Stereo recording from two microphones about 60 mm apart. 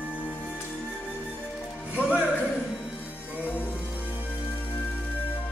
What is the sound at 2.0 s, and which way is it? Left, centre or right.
Music, right.